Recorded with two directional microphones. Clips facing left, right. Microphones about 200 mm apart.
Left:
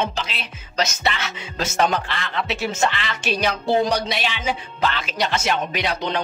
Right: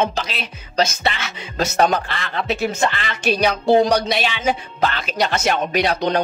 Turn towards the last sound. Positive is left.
turn(degrees=-40)  # may be behind; listen again after turning